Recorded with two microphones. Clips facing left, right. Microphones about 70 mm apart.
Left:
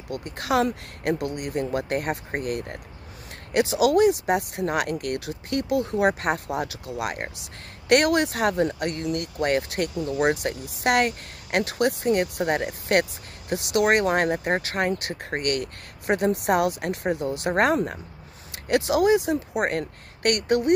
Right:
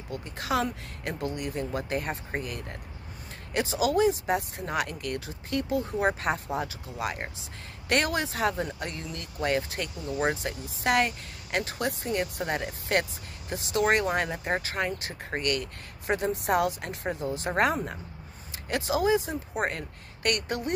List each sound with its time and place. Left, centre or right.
0.1 s speech: left